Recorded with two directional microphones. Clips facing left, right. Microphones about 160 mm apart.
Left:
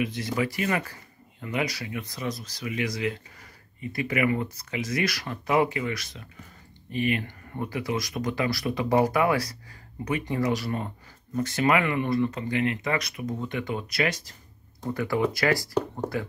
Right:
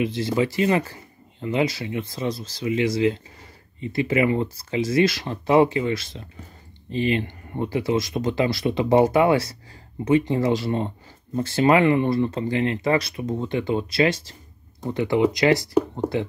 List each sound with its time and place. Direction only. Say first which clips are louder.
0.0 s speech: right 5 dB; 30° right (ahead or behind)